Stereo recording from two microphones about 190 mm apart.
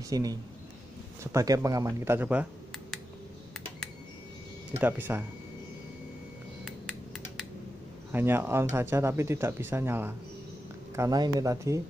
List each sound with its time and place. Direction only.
0.1 s speech: 20° right (ahead or behind)
4.7 s speech: 10° right (ahead or behind)
6.6 s computer keyboard: centre (ahead or behind)
8.1 s speech: 10° right (ahead or behind)